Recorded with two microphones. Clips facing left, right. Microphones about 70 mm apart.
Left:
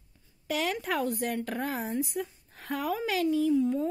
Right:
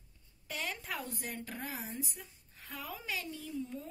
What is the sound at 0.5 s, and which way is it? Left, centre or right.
A woman's voice, left.